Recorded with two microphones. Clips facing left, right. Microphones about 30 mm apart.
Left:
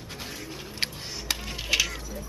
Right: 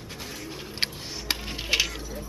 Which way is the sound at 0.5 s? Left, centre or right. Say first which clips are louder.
Right 2 dB; centre.